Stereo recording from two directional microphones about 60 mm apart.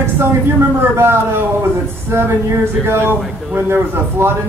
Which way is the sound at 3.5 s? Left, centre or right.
Right.